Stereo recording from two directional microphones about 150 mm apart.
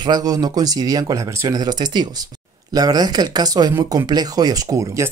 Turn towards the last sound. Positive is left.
turn(degrees=-20)  # may be behind; listen again after turning